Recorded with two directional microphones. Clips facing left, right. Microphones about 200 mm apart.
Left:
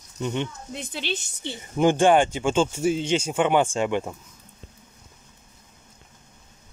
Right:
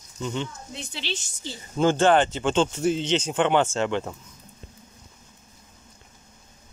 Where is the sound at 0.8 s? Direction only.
55° left (ahead or behind).